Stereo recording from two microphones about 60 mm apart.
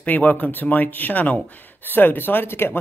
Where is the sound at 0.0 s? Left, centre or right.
Left.